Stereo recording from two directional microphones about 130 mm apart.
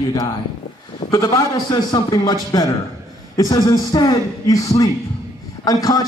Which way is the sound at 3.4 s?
30° left (ahead or behind).